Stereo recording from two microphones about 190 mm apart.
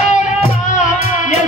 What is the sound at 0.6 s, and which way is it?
Music, 40° left (ahead or behind).